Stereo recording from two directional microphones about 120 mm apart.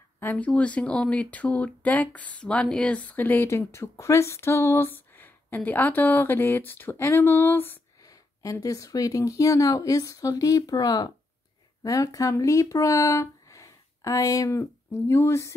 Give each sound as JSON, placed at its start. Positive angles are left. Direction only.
{"t": 0.2, "sound": "speech", "side_deg": 15}
{"t": 8.0, "sound": "speech", "side_deg": 30}